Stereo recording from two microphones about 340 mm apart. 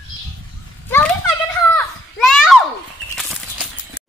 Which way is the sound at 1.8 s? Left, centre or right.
Centre.